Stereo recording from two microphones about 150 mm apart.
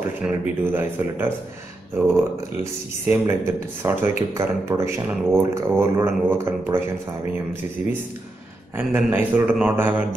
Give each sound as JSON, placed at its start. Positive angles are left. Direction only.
{"t": 0.2, "sound": "speech", "side_deg": -10}
{"t": 8.7, "sound": "speech", "side_deg": -10}